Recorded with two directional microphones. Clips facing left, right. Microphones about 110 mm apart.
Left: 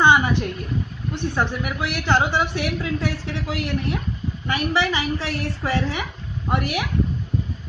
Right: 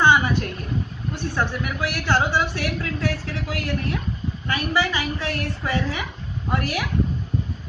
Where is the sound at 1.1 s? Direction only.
20° left (ahead or behind).